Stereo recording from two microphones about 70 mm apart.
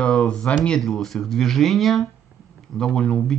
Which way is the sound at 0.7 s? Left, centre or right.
Centre.